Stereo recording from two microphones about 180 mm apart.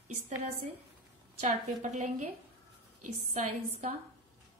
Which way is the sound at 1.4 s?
45° right (ahead or behind).